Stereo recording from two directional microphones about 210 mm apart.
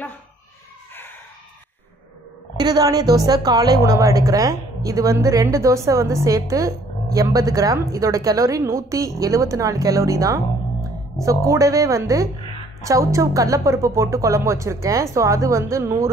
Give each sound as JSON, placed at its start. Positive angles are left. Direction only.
{"t": 2.5, "sound": "a woman's voice", "side_deg": -20}